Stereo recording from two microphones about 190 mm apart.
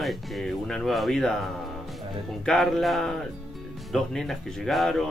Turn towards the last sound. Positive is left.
turn(degrees=0)  # may be behind; listen again after turning